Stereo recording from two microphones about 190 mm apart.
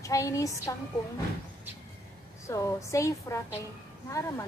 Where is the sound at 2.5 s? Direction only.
15° left (ahead or behind).